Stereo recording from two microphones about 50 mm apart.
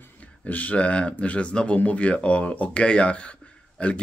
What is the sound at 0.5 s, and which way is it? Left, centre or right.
Speech, left.